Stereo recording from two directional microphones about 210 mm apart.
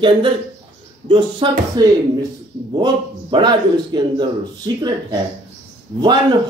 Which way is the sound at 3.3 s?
20° right (ahead or behind).